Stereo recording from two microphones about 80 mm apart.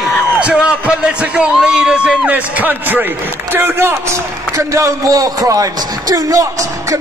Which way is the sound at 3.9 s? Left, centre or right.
Right.